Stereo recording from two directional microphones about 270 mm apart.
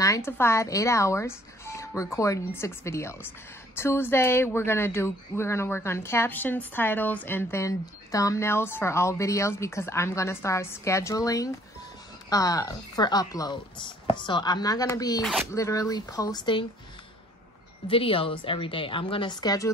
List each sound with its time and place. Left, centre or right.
0.0 s speech: centre
17.8 s a woman's voice: centre